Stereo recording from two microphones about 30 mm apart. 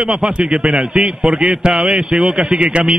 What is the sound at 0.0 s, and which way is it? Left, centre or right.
A man's voice, right.